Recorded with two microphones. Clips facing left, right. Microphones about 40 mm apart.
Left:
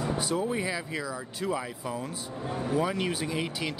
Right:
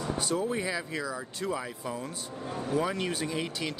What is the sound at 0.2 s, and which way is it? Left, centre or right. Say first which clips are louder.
Speech: left 1 dB; centre.